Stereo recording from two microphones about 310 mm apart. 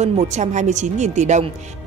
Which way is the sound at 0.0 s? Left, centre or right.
Right.